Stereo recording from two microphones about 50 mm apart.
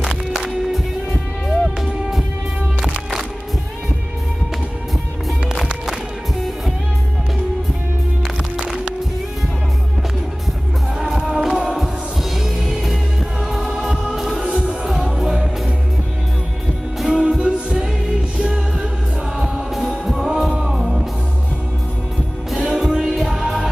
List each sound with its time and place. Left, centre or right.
0.0 s music: centre
8.5 s music: centre
11.0 s music: centre
14.5 s music: right
15.0 s music: centre
17.2 s music: centre
22.5 s music: centre